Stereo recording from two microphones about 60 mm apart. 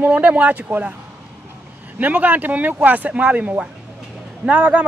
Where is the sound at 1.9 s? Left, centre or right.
Right.